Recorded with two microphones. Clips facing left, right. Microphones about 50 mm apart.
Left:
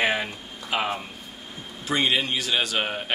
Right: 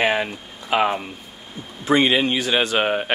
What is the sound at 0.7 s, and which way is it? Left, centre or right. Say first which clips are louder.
Speech: right 7 dB; right.